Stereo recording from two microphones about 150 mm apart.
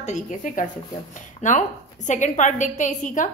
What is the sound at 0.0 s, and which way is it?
A woman's voice, 55° left (ahead or behind).